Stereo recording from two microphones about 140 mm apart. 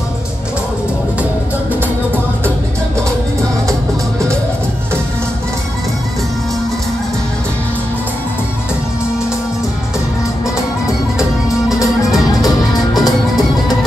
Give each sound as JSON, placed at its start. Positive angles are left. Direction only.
{"t": 12.3, "sound": "music", "side_deg": 25}